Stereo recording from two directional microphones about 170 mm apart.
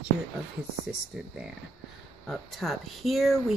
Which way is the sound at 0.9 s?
5° right (ahead or behind).